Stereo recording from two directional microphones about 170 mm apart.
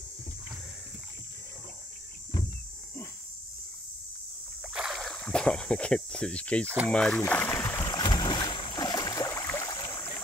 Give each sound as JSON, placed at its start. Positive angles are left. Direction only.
{"t": 4.7, "sound": "speech", "side_deg": 0}
{"t": 6.9, "sound": "boat", "side_deg": 5}